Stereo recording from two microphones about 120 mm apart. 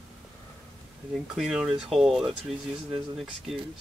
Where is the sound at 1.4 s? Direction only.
5° right (ahead or behind).